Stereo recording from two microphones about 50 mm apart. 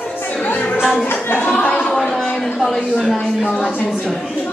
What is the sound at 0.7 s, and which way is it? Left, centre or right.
Music, centre.